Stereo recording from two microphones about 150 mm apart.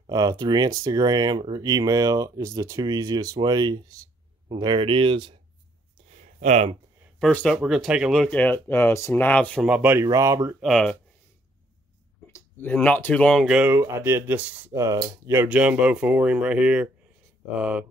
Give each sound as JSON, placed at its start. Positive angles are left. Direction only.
{"t": 0.1, "sound": "speech", "side_deg": -25}
{"t": 6.1, "sound": "a sound", "side_deg": -50}
{"t": 7.2, "sound": "speech", "side_deg": 5}
{"t": 9.6, "sound": "speech", "side_deg": -5}
{"t": 10.0, "sound": "speech", "side_deg": -20}
{"t": 10.6, "sound": "speech", "side_deg": 5}
{"t": 12.3, "sound": "speech", "side_deg": 10}
{"t": 14.7, "sound": "speech", "side_deg": -20}
{"t": 15.2, "sound": "speech", "side_deg": -10}